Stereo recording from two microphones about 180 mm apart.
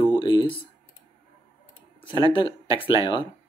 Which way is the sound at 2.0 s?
30° left (ahead or behind).